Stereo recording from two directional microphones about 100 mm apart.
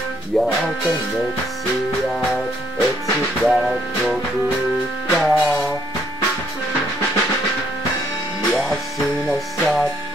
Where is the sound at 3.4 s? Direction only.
Centre (ahead or behind).